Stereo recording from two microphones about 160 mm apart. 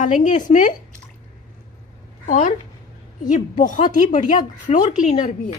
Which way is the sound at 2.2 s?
55° left (ahead or behind).